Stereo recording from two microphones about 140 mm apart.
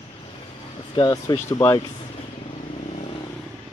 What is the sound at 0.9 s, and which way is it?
Speech, 30° left (ahead or behind).